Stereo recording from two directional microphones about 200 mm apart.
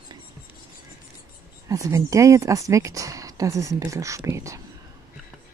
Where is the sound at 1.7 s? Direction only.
15° right (ahead or behind).